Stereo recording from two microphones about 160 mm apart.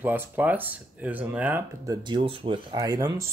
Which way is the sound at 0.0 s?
10° right (ahead or behind).